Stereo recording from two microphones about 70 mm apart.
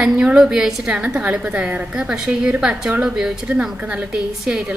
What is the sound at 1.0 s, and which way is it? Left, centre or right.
A woman's voice, right.